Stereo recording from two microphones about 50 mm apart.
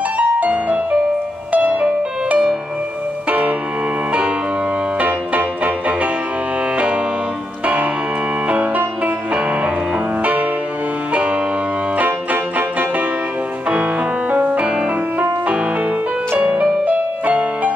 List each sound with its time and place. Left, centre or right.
0.2 s music: right
4.9 s music: right
7.6 s music: right
14.3 s music: right